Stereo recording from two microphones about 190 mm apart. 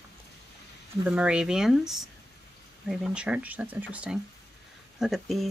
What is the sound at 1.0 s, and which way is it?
Speech, 5° right (ahead or behind).